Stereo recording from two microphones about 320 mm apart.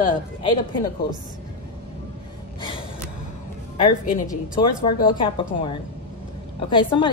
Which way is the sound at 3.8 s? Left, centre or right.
Left.